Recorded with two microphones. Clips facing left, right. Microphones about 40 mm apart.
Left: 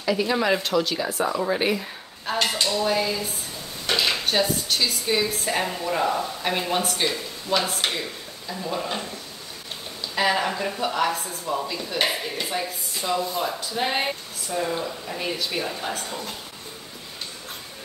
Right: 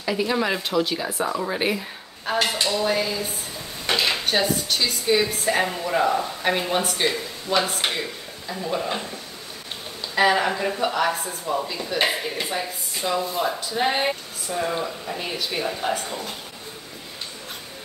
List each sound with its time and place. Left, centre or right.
0.0 s speech: centre
10.1 s speech: centre